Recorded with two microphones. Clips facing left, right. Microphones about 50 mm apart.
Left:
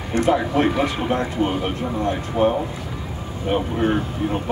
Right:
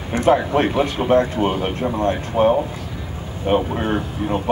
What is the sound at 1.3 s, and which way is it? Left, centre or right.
Speech, right.